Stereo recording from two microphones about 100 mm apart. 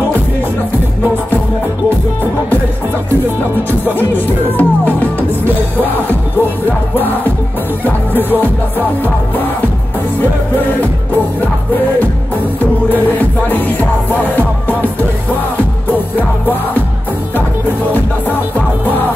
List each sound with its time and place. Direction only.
3.8 s music: 20° left (ahead or behind)
6.6 s music: 20° left (ahead or behind)
12.9 s music: 15° left (ahead or behind)